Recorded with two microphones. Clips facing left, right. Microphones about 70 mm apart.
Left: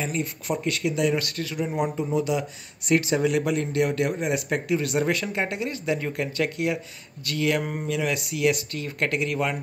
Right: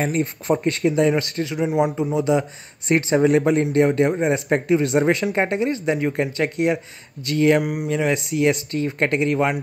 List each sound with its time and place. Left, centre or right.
0.0 s speech: right
7.6 s speech: centre
7.9 s speech: right